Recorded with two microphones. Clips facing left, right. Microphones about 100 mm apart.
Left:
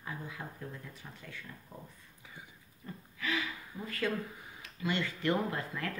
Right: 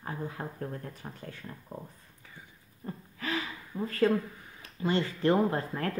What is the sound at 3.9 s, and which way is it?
Speech, 35° right (ahead or behind).